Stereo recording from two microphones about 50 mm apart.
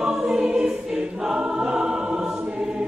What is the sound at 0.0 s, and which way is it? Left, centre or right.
Choir, centre.